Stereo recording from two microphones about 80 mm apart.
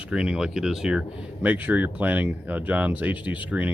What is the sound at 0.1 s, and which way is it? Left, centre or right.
Speech, centre.